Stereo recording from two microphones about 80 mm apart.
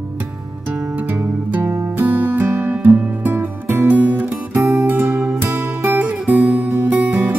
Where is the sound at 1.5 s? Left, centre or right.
Right.